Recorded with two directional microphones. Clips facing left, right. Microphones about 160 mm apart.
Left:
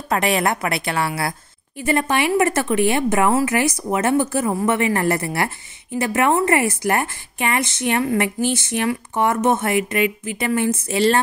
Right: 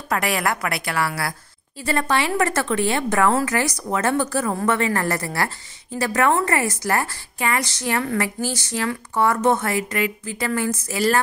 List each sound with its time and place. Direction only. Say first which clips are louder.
0.1 s a woman's voice: left 3 dB; 25° left (ahead or behind)